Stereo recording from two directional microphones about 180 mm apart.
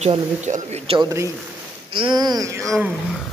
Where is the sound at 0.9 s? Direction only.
15° right (ahead or behind).